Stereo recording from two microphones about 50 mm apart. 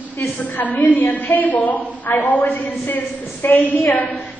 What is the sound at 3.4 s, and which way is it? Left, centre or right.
Speech, left.